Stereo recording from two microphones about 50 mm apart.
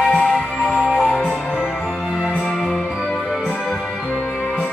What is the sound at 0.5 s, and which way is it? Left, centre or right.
Music, right.